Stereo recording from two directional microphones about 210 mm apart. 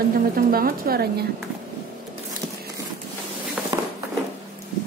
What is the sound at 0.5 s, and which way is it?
Speech, 45° right (ahead or behind).